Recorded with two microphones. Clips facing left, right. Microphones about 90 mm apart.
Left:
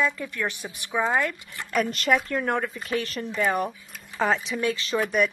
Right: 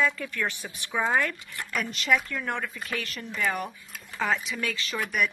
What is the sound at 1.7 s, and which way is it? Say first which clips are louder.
Speech: left 4 dB; 50° left (ahead or behind).